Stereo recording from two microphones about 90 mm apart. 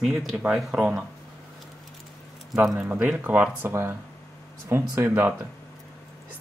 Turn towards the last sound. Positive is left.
turn(degrees=-20)  # may be behind; listen again after turning